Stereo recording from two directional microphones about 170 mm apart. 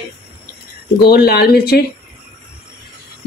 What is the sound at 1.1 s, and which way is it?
Speech, 70° left (ahead or behind).